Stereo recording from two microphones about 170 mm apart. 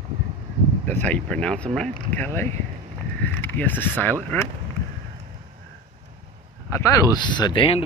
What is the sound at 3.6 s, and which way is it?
Speech, 10° left (ahead or behind).